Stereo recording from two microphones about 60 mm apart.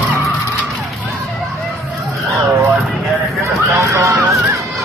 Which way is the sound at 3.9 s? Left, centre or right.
Right.